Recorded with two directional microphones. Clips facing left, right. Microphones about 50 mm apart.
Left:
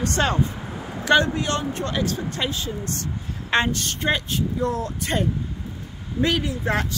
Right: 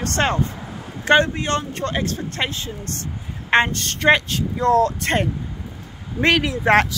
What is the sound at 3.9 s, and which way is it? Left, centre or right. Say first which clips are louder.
Speech: right 10 dB; right.